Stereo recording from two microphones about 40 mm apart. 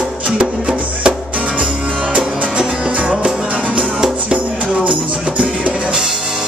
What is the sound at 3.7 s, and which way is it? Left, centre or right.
Music, right.